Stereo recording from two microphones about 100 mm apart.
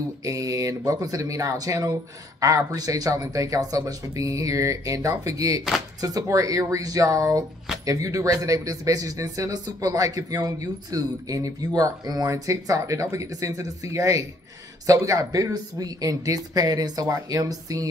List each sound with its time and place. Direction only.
0.2 s speech: 35° right (ahead or behind)